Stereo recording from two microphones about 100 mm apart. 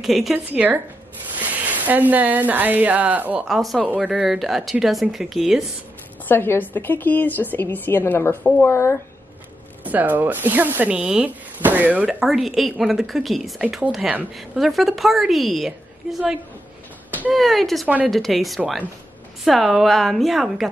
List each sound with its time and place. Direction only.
0.0 s a woman's voice: centre (ahead or behind)
0.5 s speech: 15° right (ahead or behind)
3.4 s a woman's voice: centre (ahead or behind)
3.8 s speech: 15° right (ahead or behind)
4.1 s a woman's voice: centre (ahead or behind)
6.2 s a woman's voice: 20° left (ahead or behind)
9.8 s speech: 15° right (ahead or behind)
12.2 s a woman's voice: centre (ahead or behind)
17.8 s speech: 15° right (ahead or behind)
18.1 s a woman's voice: centre (ahead or behind)